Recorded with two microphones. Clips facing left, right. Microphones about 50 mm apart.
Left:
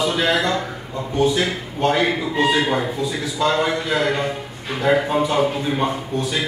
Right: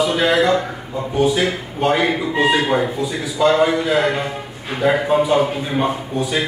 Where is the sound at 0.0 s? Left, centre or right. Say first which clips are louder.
Right 4 dB; centre.